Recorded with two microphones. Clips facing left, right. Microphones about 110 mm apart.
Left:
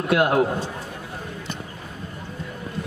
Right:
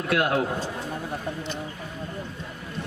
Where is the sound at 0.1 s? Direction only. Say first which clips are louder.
Left 5 dB; 25° left (ahead or behind).